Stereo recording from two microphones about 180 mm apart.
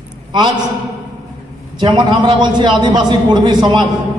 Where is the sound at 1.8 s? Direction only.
25° right (ahead or behind).